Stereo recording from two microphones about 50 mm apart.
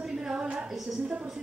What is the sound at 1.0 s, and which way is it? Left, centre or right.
Speech, right.